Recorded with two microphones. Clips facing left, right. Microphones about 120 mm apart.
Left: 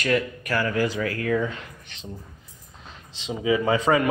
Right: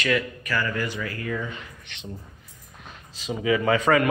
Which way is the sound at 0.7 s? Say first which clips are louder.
Left 5 dB; 85° left.